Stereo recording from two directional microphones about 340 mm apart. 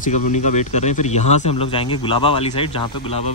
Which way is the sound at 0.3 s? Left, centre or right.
Left.